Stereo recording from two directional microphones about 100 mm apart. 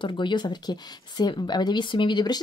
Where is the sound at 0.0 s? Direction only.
55° left (ahead or behind).